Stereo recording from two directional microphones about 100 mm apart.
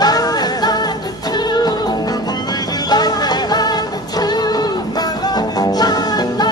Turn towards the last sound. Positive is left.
turn(degrees=40)  # may be behind; listen again after turning